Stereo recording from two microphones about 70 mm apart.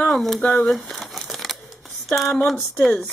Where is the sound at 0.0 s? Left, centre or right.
Centre.